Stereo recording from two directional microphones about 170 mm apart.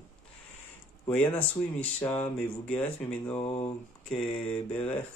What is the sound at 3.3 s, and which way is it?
Speech, 35° left (ahead or behind).